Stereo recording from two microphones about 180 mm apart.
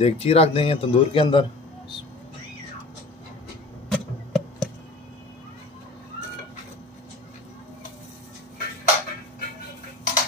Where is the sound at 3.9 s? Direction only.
Centre (ahead or behind).